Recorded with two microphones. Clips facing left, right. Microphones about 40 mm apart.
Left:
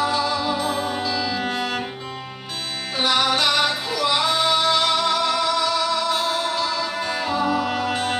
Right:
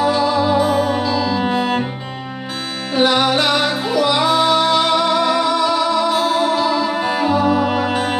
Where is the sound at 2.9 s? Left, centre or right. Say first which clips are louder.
Right 5 dB; centre.